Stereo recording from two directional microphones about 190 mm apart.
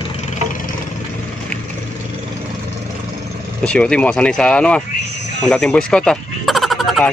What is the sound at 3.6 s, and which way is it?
Speech, 5° left (ahead or behind).